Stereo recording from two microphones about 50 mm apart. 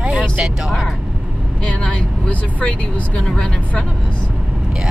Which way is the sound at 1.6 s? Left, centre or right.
Left.